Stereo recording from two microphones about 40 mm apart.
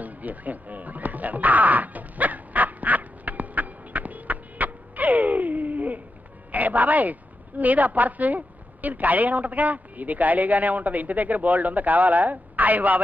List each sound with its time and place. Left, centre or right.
0.0 s music: right
6.5 s a woman's voice: right